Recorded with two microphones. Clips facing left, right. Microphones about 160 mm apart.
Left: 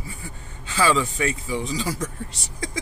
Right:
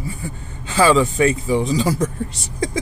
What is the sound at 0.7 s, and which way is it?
Speech, 45° right (ahead or behind).